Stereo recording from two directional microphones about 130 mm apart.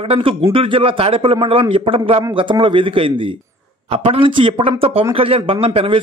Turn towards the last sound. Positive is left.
turn(degrees=-45)  # may be behind; listen again after turning